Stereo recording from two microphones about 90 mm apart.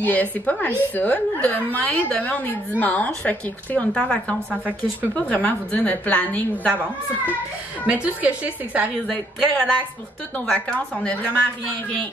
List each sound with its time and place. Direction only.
0.0 s a woman's voice: 20° left (ahead or behind)
7.8 s a woman's voice: 15° right (ahead or behind)
9.1 s a woman's voice: 15° left (ahead or behind)